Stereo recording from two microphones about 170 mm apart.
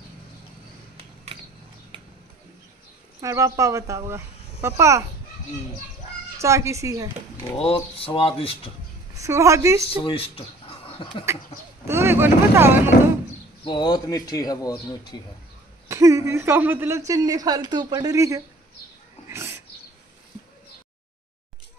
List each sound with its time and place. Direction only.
3.2 s speech: 20° right (ahead or behind)
6.3 s speech: 15° right (ahead or behind)
7.5 s speech: 35° left (ahead or behind)
9.1 s speech: 15° right (ahead or behind)
9.9 s speech: 35° left (ahead or behind)
11.9 s speech: 15° right (ahead or behind)
13.7 s speech: 25° left (ahead or behind)
15.9 s a woman's voice: 20° right (ahead or behind)
19.2 s cat: 15° right (ahead or behind)